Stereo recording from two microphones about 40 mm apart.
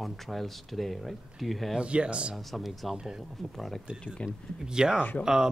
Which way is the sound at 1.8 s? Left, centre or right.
Right.